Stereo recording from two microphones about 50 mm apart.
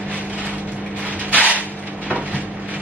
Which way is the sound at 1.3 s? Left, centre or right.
Right.